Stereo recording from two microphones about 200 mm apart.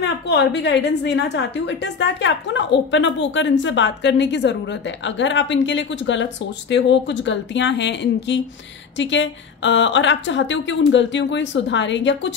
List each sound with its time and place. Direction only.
0.0 s a woman's voice: 60° left (ahead or behind)